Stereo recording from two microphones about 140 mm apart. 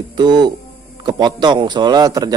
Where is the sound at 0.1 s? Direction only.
30° right (ahead or behind).